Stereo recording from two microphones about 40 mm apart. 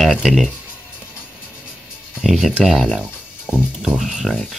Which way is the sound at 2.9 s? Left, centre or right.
Right.